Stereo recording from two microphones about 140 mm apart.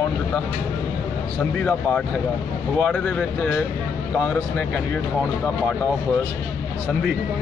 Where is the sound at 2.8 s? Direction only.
5° left (ahead or behind).